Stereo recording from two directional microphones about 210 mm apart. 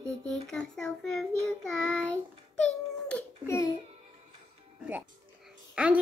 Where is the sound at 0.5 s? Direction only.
5° left (ahead or behind).